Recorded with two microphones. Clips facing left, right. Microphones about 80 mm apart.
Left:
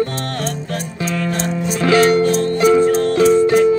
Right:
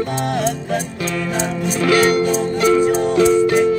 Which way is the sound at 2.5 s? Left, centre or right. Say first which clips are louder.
Left 2 dB; left.